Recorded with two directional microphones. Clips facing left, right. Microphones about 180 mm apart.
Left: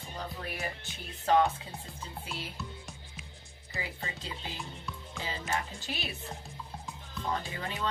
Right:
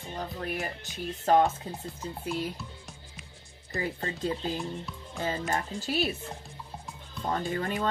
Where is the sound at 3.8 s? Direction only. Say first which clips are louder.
Right 8 dB; 45° right (ahead or behind).